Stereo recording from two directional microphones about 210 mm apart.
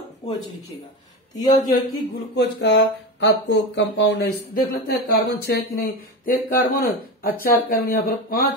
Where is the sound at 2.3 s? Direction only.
55° left (ahead or behind).